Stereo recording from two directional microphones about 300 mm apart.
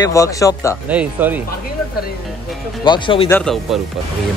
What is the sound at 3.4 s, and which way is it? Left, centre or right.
Speech, centre.